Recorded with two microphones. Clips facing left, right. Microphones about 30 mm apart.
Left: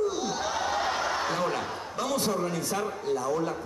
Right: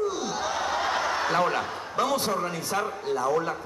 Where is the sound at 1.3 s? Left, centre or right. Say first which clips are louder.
Right 4 dB; centre.